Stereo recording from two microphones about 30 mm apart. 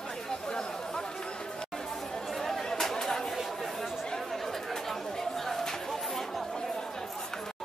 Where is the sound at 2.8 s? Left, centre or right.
Centre.